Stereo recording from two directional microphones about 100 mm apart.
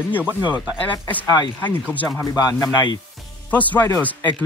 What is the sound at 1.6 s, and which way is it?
Speech, 15° left (ahead or behind).